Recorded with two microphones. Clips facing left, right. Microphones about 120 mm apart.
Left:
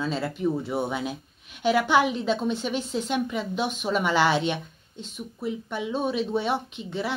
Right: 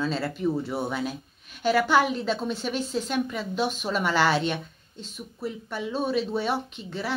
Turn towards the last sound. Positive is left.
turn(degrees=15)  # may be behind; listen again after turning